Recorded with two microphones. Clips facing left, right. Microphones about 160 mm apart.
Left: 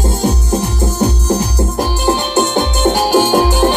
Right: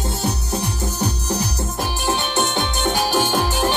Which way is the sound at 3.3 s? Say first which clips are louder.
Left 8 dB; 60° left (ahead or behind).